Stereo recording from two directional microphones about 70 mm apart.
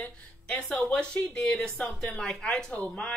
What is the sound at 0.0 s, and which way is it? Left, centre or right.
Speech, centre.